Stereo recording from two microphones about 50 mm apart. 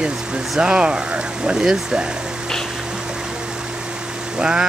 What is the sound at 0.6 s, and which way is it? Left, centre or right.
Speech, centre.